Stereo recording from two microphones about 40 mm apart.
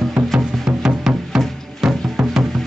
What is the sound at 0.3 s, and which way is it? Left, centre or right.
Music, centre.